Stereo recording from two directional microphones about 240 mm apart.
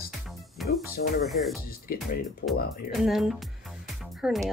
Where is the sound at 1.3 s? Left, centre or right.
Centre.